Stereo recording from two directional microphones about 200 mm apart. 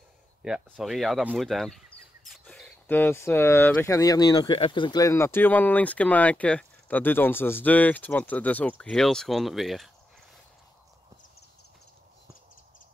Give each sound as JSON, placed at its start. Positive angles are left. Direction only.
{"t": 0.4, "sound": "speech", "side_deg": -5}